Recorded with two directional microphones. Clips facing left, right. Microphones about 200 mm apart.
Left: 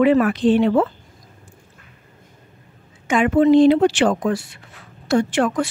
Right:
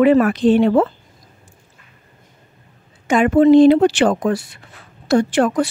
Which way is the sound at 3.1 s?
40° right (ahead or behind).